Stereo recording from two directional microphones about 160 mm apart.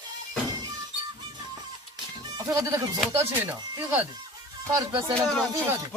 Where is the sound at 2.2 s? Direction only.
25° right (ahead or behind).